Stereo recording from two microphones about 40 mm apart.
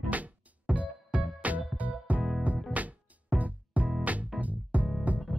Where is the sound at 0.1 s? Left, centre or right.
Right.